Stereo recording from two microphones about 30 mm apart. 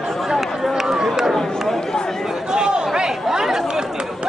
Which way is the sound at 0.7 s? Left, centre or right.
Centre.